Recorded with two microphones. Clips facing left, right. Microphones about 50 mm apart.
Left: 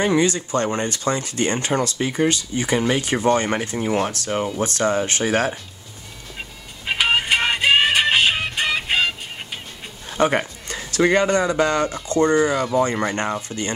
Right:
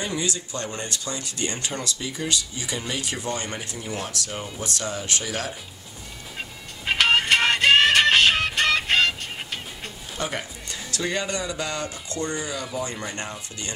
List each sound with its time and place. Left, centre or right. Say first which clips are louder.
0.0 s speech: left 10 dB; left
6.9 s music: even; centre
10.1 s a man's voice: left 11 dB; left